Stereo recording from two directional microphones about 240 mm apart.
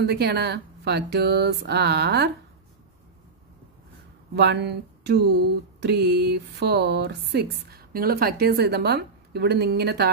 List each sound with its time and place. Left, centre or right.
0.0 s speech: right
4.4 s speech: right